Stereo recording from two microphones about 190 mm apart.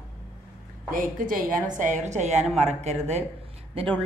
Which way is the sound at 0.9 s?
45° right (ahead or behind).